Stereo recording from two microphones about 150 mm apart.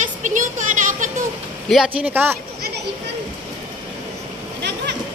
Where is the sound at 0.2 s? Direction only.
60° right (ahead or behind).